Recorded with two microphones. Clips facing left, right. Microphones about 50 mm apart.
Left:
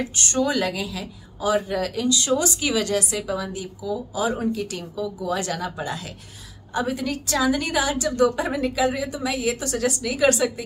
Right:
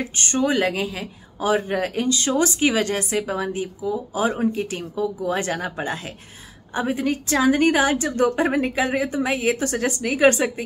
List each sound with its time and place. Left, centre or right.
0.0 s a woman's voice: right